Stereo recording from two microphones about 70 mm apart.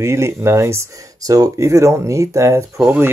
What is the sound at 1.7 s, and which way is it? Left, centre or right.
Speech, right.